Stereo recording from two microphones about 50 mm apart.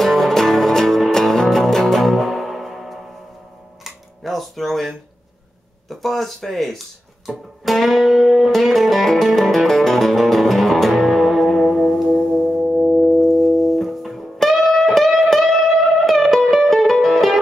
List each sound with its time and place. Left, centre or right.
0.0 s music: centre
3.8 s a sound: centre
5.9 s speech: centre
7.2 s music: centre
12.7 s singing bowl: right
13.3 s music: centre